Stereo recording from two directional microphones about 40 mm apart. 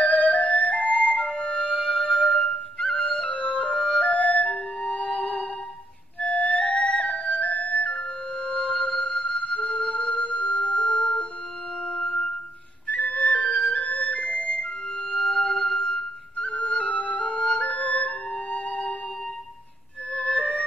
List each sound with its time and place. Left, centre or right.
0.0 s music: left
1.7 s music: right
2.8 s music: centre
3.4 s music: left
3.7 s music: right
4.0 s music: left
4.5 s music: left
12.8 s flute: left
15.0 s music: left
16.3 s flute: left
20.1 s music: left